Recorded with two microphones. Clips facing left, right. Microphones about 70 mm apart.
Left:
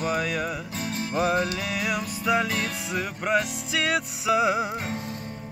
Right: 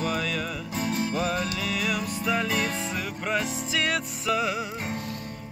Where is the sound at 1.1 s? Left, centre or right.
Left.